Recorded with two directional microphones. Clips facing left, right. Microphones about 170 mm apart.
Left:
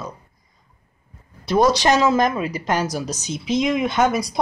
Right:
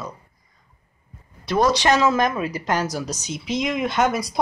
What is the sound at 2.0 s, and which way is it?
Speech, 20° left (ahead or behind).